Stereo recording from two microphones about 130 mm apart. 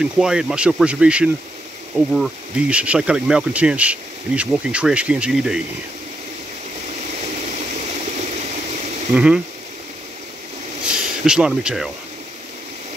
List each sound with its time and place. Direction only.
0.0 s speech: 5° right (ahead or behind)
8.0 s water: 60° right (ahead or behind)
9.1 s speech: 10° right (ahead or behind)
10.8 s a sound: 5° right (ahead or behind)